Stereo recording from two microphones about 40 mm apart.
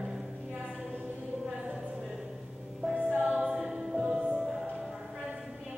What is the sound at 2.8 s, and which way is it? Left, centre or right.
Music, right.